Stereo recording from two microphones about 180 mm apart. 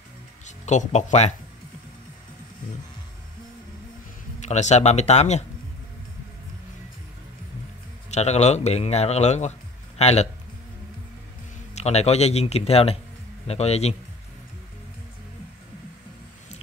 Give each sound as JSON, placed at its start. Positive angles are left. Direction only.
{"t": 0.5, "sound": "a man's voice", "side_deg": 40}
{"t": 4.4, "sound": "a man's voice", "side_deg": 40}
{"t": 8.1, "sound": "a man's voice", "side_deg": 40}
{"t": 11.7, "sound": "a man's voice", "side_deg": 35}